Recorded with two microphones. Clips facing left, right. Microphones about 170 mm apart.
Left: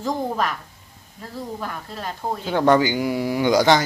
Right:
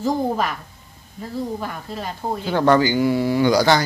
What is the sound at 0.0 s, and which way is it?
A woman's voice, 5° right (ahead or behind).